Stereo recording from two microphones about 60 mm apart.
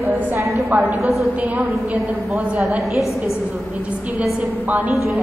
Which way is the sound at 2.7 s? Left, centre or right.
Centre.